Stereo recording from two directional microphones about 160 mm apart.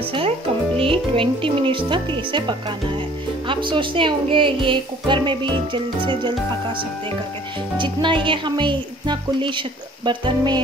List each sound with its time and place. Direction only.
0.7 s speech: 35° right (ahead or behind)
7.7 s speech: 30° right (ahead or behind)